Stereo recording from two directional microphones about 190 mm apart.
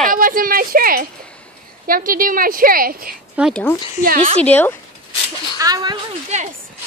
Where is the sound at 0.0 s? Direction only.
45° right (ahead or behind).